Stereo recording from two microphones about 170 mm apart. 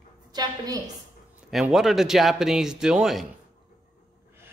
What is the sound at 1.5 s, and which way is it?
Speech, centre (ahead or behind).